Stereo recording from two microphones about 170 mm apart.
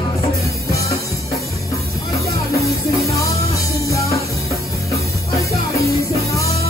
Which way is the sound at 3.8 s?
20° left (ahead or behind).